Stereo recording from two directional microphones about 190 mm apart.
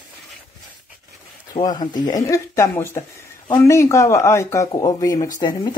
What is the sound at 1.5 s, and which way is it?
Speech, 20° left (ahead or behind).